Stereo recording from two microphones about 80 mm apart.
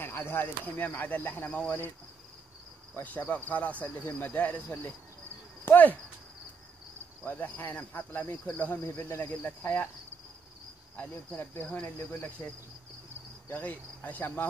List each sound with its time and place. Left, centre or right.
0.0 s cricket: left
3.0 s cricket: left
5.7 s cricket: left
7.2 s cricket: left
8.8 s speech: left
9.3 s cricket: left
11.0 s cricket: left